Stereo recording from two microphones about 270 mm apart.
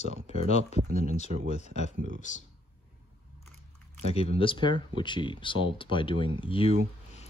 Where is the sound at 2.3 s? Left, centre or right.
Left.